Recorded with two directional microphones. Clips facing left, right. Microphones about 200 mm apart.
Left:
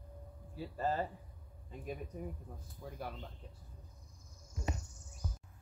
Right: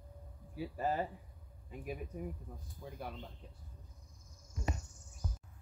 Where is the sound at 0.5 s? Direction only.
10° right (ahead or behind).